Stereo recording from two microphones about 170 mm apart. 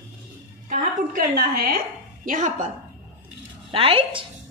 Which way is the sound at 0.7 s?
60° right (ahead or behind).